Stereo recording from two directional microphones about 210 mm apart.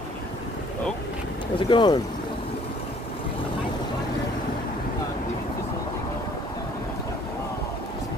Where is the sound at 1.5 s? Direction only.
25° left (ahead or behind).